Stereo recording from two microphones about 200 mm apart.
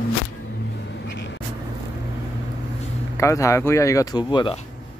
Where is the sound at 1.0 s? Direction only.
60° left (ahead or behind).